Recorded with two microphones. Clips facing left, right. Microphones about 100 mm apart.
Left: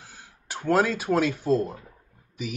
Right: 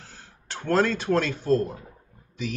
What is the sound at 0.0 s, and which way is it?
Speech, 10° left (ahead or behind).